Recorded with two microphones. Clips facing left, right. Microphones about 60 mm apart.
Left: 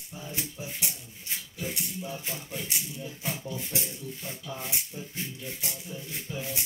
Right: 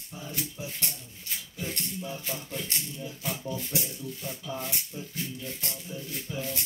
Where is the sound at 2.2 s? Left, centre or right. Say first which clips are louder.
Right 1 dB; centre.